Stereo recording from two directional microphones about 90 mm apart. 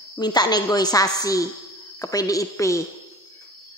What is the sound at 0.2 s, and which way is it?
A woman's voice, 50° left (ahead or behind).